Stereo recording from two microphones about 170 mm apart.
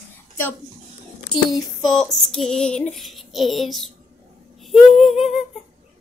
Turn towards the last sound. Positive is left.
turn(degrees=0)  # may be behind; listen again after turning